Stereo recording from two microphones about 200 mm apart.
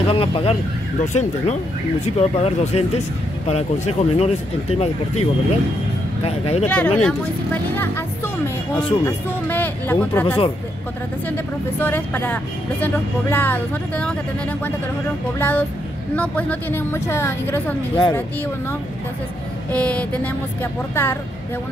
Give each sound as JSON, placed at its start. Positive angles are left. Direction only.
{"t": 0.0, "sound": "speech", "side_deg": 25}
{"t": 6.6, "sound": "speech", "side_deg": 5}
{"t": 10.2, "sound": "speech", "side_deg": 30}
{"t": 11.2, "sound": "speech", "side_deg": 10}
{"t": 15.3, "sound": "speech", "side_deg": 10}
{"t": 19.7, "sound": "speech", "side_deg": 5}